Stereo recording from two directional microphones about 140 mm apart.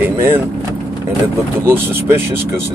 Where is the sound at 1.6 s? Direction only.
15° right (ahead or behind).